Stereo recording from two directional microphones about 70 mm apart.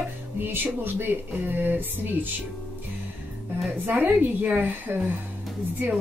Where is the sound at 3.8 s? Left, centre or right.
Right.